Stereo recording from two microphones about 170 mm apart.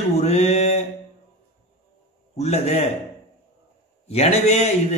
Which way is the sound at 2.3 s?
40° left (ahead or behind).